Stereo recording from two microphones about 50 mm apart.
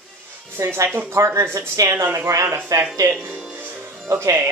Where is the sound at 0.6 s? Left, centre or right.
Right.